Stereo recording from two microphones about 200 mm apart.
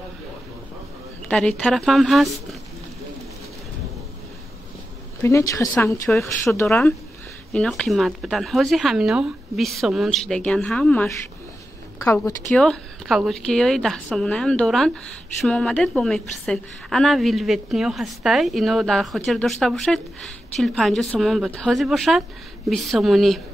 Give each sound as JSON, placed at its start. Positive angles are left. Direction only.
{"t": 1.6, "sound": "speech", "side_deg": 0}
{"t": 5.2, "sound": "a woman's voice", "side_deg": 15}
{"t": 6.0, "sound": "speech", "side_deg": 5}
{"t": 6.5, "sound": "a woman's voice", "side_deg": 15}